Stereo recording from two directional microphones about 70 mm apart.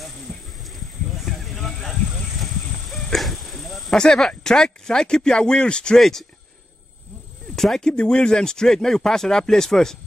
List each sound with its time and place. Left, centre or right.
0.3 s a sound: centre
4.0 s speech: centre
7.5 s speech: centre